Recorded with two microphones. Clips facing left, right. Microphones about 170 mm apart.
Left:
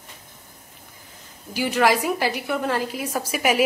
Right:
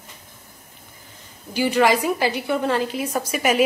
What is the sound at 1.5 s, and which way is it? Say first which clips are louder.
Speech: right 2 dB; centre (ahead or behind).